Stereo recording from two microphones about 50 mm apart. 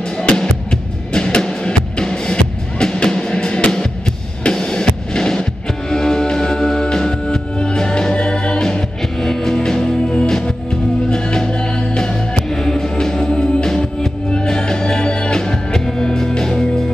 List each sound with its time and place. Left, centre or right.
0.2 s music: centre